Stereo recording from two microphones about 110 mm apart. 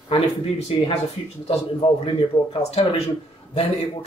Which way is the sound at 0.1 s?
60° left (ahead or behind).